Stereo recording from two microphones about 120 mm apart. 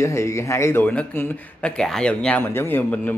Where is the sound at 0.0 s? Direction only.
25° left (ahead or behind).